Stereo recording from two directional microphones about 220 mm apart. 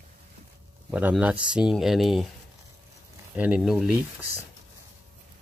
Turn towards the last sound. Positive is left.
turn(degrees=-5)  # may be behind; listen again after turning